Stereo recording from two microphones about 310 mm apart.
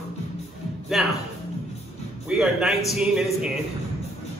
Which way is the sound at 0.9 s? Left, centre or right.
Centre.